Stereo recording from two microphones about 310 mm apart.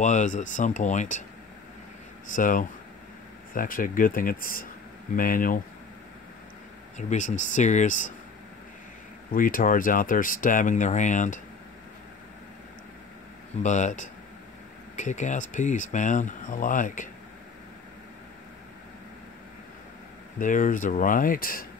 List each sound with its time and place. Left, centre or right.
0.0 s speech: left
2.3 s speech: left
7.0 s speech: left
9.3 s speech: left
13.6 s speech: left
20.3 s speech: left